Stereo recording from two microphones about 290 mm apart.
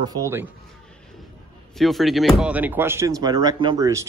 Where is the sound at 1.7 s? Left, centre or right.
Centre.